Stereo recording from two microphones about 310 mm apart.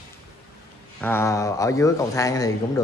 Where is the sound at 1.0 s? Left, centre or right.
Centre.